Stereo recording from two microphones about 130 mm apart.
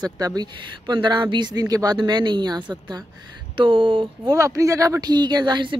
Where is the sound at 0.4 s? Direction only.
35° right (ahead or behind).